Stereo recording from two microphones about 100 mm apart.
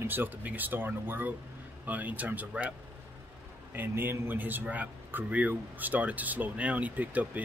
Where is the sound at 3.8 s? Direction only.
20° right (ahead or behind).